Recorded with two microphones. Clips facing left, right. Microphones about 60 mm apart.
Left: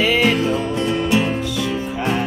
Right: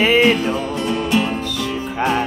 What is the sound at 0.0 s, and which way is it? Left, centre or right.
Music, right.